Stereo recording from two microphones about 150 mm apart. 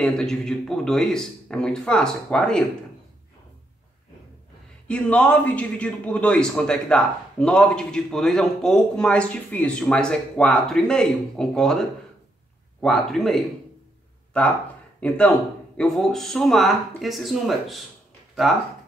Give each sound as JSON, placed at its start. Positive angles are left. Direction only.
{"t": 0.0, "sound": "a man's voice", "side_deg": 5}
{"t": 4.8, "sound": "a man's voice", "side_deg": 5}
{"t": 12.8, "sound": "a man's voice", "side_deg": 0}
{"t": 15.0, "sound": "a man's voice", "side_deg": 10}